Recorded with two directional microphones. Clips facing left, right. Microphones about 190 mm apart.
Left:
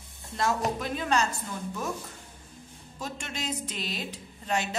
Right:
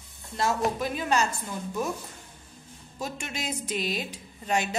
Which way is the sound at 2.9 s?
10° right (ahead or behind).